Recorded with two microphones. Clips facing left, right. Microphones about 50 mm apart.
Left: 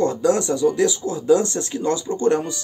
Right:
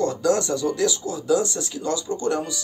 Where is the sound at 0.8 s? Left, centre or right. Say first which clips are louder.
Left 3 dB; left.